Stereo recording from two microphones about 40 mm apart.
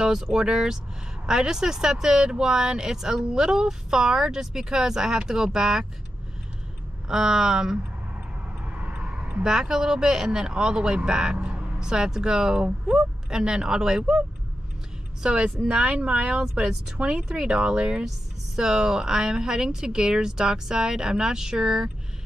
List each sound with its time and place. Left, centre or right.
0.0 s speech: centre
7.1 s speech: centre
8.6 s vehicle: right
9.0 s a sound: right
9.4 s speech: centre
15.2 s speech: right
17.2 s speech: centre